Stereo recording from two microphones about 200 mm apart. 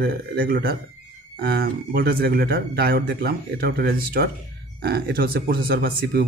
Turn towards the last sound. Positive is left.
turn(degrees=-50)  # may be behind; listen again after turning